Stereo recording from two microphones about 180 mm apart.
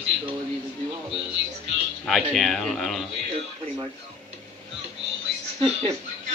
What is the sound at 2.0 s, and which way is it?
Speech, centre (ahead or behind).